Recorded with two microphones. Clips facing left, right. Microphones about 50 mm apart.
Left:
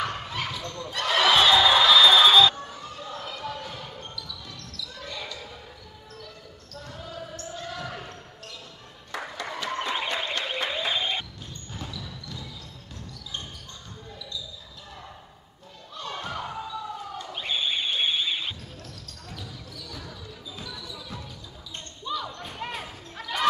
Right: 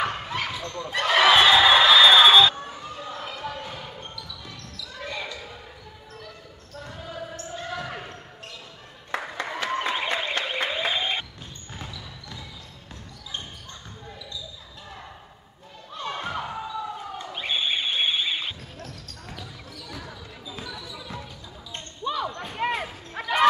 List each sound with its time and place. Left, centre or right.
0.0 s basketball bounce: right
6.7 s basketball bounce: right
9.3 s applause: right
10.0 s a sound: right
10.4 s a sound: centre
11.7 s basketball bounce: centre
15.9 s basketball bounce: right
19.2 s basketball bounce: right
21.7 s basketball bounce: right